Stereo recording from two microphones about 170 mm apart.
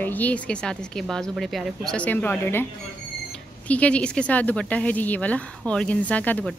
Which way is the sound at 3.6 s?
10° left (ahead or behind).